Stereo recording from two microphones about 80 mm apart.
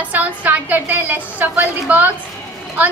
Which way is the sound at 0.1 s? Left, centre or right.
Centre.